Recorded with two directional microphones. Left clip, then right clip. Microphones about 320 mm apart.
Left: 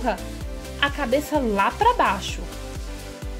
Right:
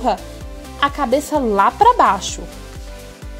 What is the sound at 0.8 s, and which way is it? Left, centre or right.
Speech, centre.